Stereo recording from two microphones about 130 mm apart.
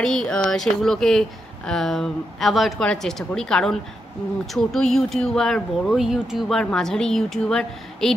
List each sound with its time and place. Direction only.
0.0 s speech: 5° left (ahead or behind)